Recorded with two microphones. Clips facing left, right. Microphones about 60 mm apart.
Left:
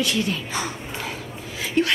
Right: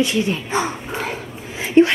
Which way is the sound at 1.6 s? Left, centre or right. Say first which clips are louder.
Right 9 dB; right.